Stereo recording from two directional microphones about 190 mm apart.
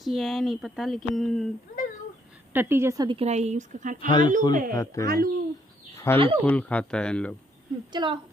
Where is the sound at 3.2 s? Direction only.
35° right (ahead or behind).